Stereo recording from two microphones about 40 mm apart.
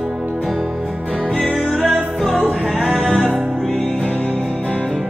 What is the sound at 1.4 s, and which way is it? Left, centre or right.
Music, left.